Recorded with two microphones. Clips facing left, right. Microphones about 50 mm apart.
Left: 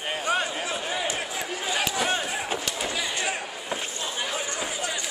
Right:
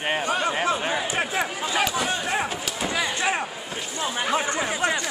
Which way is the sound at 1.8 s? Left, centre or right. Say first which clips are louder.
Right 1 dB; centre.